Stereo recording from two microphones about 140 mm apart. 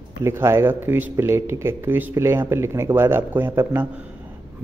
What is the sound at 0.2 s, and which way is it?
A man's voice, 20° right (ahead or behind).